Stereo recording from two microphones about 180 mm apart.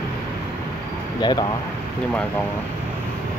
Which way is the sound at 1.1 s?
25° left (ahead or behind).